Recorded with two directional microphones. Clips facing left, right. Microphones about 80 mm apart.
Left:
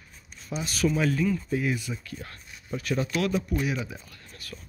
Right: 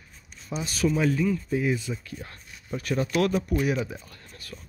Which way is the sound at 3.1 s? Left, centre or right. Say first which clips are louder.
Right 5 dB; right.